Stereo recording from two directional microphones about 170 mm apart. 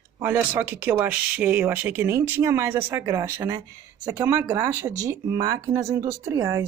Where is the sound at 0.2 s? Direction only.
10° right (ahead or behind).